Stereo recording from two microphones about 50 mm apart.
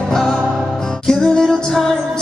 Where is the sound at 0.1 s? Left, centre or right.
Centre.